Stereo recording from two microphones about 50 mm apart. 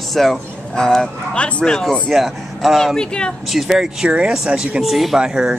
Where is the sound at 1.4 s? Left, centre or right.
Left.